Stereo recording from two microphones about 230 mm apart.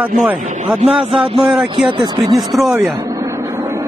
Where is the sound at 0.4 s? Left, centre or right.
Right.